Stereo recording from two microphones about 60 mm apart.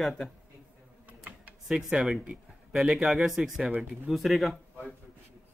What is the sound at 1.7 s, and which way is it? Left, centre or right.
A man's voice, centre.